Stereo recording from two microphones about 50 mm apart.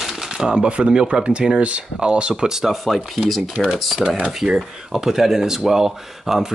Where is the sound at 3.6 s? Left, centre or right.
Centre.